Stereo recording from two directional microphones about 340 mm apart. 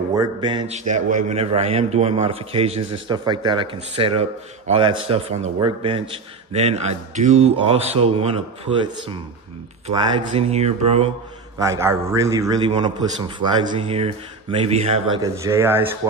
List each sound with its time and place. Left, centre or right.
0.1 s a man's voice: centre
10.3 s a man's voice: centre